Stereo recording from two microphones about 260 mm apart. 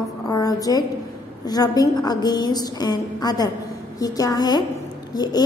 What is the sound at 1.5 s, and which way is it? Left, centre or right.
A woman's voice, centre.